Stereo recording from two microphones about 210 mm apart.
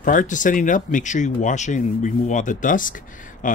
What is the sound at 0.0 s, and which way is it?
Speech, 40° left (ahead or behind).